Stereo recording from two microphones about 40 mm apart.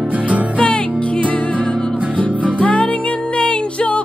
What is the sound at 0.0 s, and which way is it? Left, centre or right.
Music, right.